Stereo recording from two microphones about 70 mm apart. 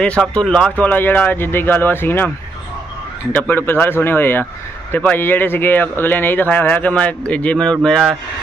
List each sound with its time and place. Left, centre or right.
0.3 s speech: centre
0.8 s speech: left
3.3 s speech: left; by 8.0 s centre